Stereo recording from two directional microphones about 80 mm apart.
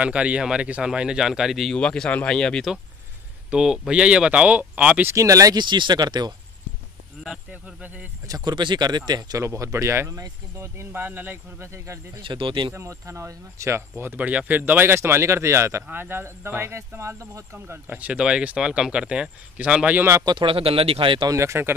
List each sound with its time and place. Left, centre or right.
0.0 s speech: centre
1.7 s speech: centre
3.4 s speech: centre
5.0 s speech: right
5.6 s speech: right
7.2 s speech: centre
8.3 s speech: right
9.4 s speech: right
12.2 s speech: right
12.7 s speech: right
17.8 s speech: centre
20.0 s speech: right
20.2 s speech: right
21.3 s speech: right